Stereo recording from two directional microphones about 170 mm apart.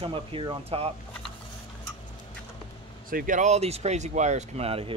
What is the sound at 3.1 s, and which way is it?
Speech, 55° right (ahead or behind).